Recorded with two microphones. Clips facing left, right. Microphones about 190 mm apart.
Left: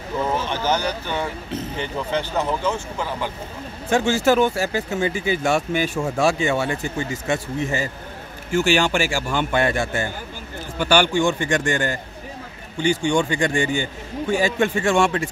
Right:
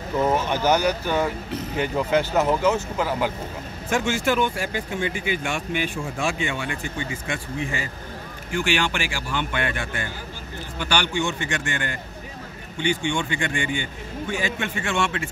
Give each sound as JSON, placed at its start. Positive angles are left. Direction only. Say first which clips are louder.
{"t": 0.5, "sound": "speech", "louder": "right 2 dB", "side_deg": -10}
{"t": 3.9, "sound": "a man's voice", "louder": "left 5 dB", "side_deg": 35}